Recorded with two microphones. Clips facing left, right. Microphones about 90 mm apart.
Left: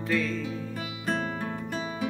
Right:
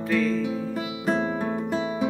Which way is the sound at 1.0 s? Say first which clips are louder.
Right 5 dB; 20° right (ahead or behind).